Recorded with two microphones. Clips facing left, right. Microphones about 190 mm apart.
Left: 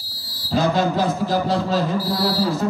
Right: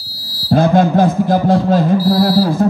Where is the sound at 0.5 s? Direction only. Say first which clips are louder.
Right 7 dB; 55° right (ahead or behind).